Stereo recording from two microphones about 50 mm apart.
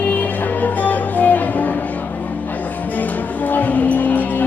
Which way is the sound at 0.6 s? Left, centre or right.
Left.